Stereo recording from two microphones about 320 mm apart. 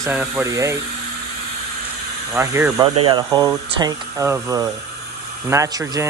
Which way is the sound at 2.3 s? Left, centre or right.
Centre.